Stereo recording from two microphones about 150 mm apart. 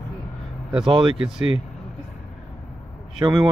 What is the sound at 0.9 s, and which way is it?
Speech, 35° right (ahead or behind).